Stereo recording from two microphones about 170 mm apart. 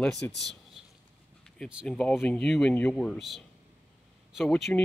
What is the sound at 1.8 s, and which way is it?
Speech, 5° left (ahead or behind).